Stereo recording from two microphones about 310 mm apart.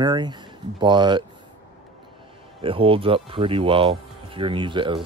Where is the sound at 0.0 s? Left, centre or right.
Centre.